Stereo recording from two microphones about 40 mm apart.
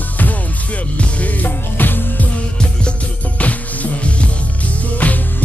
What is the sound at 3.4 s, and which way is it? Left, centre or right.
Music, left.